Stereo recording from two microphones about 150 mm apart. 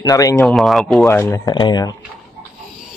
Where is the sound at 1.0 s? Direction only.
15° left (ahead or behind).